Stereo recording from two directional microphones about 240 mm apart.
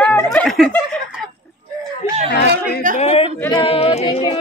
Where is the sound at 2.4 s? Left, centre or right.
Left.